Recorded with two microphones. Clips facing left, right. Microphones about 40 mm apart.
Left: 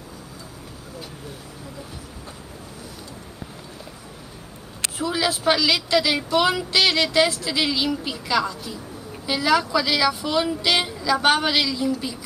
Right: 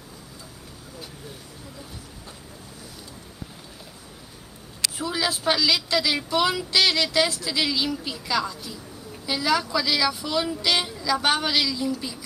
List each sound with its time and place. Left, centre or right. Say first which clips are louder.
4.9 s a woman's voice: left 4 dB; centre